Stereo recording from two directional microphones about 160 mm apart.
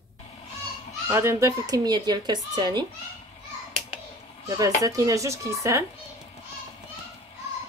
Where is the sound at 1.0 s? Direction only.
15° right (ahead or behind).